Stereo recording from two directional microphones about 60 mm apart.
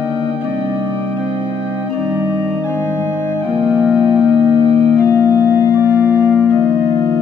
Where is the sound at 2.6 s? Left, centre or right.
Left.